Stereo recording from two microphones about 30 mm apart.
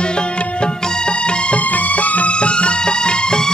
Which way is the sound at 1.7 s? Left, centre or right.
Left.